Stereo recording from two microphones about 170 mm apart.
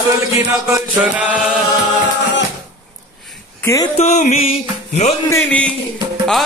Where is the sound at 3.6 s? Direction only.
20° left (ahead or behind).